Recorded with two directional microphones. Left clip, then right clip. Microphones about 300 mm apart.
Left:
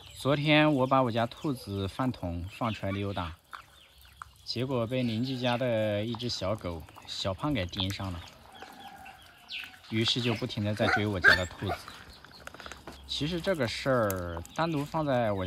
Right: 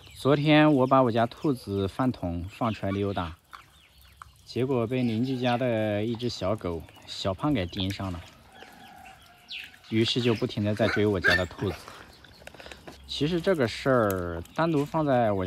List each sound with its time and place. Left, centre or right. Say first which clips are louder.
0.2 s speech: right 4 dB; centre
5.0 s speech: right 4 dB; centre
5.3 s speech: right 2 dB; centre
9.9 s speech: right 4 dB; centre